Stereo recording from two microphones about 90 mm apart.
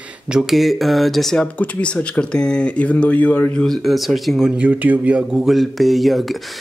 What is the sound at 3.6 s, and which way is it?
Speech, centre (ahead or behind).